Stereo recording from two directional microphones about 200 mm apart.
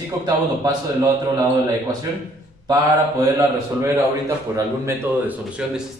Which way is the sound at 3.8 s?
15° right (ahead or behind).